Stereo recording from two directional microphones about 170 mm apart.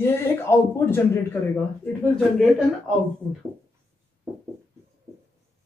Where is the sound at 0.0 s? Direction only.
15° left (ahead or behind).